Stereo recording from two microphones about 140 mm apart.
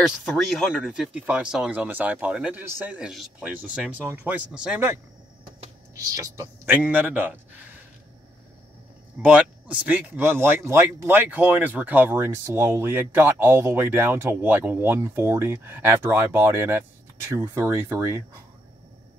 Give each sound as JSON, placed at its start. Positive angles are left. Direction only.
{"t": 0.0, "sound": "speech", "side_deg": 0}
{"t": 6.1, "sound": "speech", "side_deg": -20}
{"t": 9.2, "sound": "speech", "side_deg": -10}